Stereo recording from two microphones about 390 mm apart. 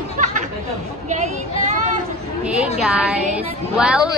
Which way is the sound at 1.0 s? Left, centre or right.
Centre.